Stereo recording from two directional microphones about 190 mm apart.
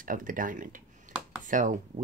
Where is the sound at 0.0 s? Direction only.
45° right (ahead or behind).